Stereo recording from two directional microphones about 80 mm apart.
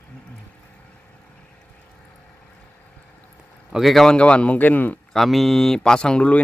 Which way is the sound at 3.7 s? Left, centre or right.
Centre.